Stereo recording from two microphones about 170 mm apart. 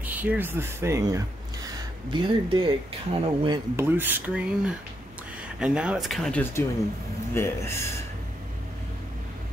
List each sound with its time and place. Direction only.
0.0 s speech: 10° right (ahead or behind); by 3.6 s 25° right (ahead or behind)
3.7 s speech: 10° right (ahead or behind)
7.3 s speech: 15° left (ahead or behind)